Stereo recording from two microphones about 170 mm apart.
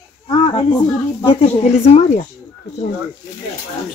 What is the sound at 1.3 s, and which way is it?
Speech, 35° left (ahead or behind).